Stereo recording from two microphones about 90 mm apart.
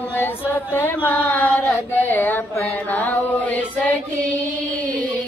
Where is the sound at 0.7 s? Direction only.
20° left (ahead or behind).